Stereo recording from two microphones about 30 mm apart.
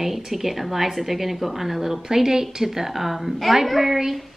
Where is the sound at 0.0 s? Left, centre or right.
Centre.